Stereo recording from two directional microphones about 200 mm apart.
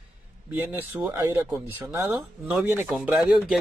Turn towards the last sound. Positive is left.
turn(degrees=-5)  # may be behind; listen again after turning